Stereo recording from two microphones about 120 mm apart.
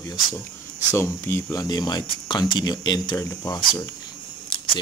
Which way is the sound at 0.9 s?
20° left (ahead or behind).